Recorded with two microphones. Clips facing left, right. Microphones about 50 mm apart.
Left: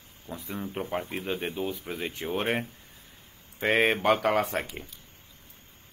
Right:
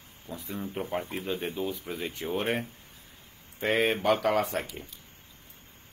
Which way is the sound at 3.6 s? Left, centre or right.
Left.